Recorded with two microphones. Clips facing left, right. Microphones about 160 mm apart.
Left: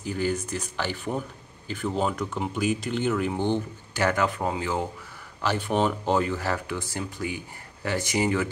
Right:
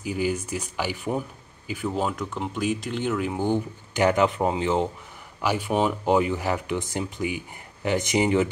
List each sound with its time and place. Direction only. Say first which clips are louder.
0.0 s speech: right 1 dB; 10° right (ahead or behind)
5.4 s speech: right 1 dB; 10° right (ahead or behind)